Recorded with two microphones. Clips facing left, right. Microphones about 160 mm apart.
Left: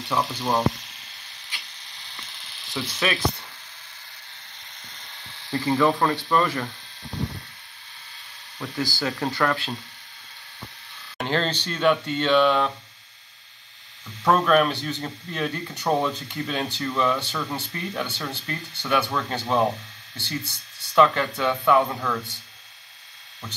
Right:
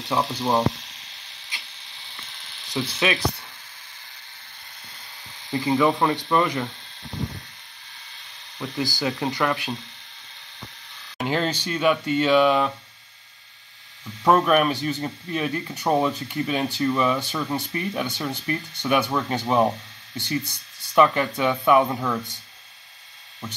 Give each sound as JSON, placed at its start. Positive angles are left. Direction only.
{"t": 0.3, "sound": "speech", "side_deg": -20}
{"t": 2.0, "sound": "electric toothbrush", "side_deg": -20}
{"t": 5.5, "sound": "speech", "side_deg": -15}
{"t": 8.5, "sound": "speech", "side_deg": -20}
{"t": 11.1, "sound": "speech", "side_deg": -10}
{"t": 14.2, "sound": "speech", "side_deg": -15}